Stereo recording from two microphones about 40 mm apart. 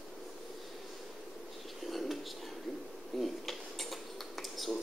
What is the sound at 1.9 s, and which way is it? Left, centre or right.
Whispering, centre.